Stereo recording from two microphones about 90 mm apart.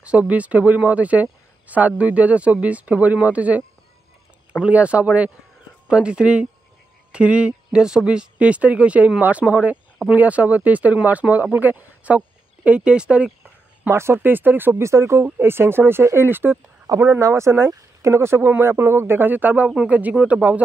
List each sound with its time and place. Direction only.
0.0 s speech: 15° right (ahead or behind)
4.6 s speech: 15° right (ahead or behind)
13.8 s speech: 30° right (ahead or behind)